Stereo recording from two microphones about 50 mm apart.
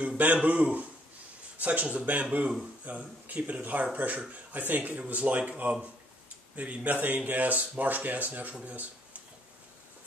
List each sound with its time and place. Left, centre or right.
0.2 s speech: right
6.5 s speech: right
8.6 s a sound: right